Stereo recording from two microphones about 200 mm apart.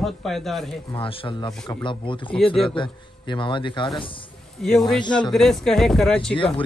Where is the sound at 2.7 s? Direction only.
25° left (ahead or behind).